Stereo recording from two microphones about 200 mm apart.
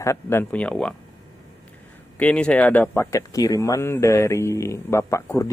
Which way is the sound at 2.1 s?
5° left (ahead or behind).